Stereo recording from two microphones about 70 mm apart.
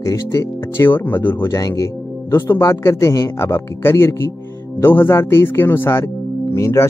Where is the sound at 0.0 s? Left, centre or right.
Left.